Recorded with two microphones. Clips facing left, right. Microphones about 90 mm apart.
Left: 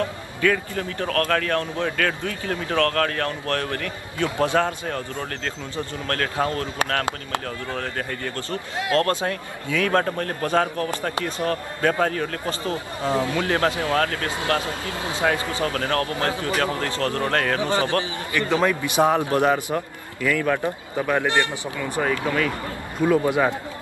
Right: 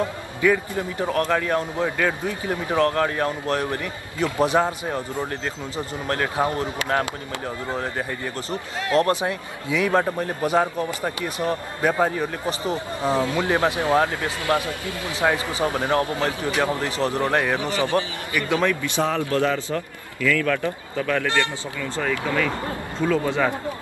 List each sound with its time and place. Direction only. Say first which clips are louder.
0.0 s a man's voice: right 1 dB; 15° right (ahead or behind)
14.6 s a man's voice: left 1 dB; 25° left (ahead or behind)
15.2 s a man's voice: right 2 dB; 20° right (ahead or behind)
17.6 s a man's voice: even; 25° left (ahead or behind)